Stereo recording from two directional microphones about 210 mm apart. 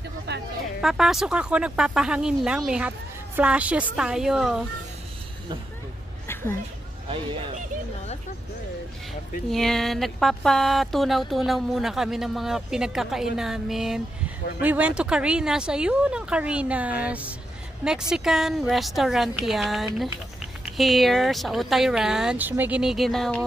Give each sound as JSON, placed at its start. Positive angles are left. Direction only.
{"t": 0.3, "sound": "a sound", "side_deg": -50}
{"t": 0.7, "sound": "speech", "side_deg": 0}
{"t": 9.5, "sound": "speech", "side_deg": 0}
{"t": 17.0, "sound": "music", "side_deg": -5}
{"t": 17.8, "sound": "speech", "side_deg": -5}